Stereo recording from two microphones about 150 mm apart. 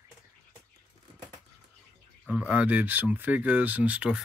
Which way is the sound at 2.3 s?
5° right (ahead or behind).